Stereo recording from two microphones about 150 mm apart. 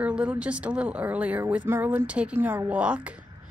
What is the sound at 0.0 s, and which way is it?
A woman's voice, 10° right (ahead or behind).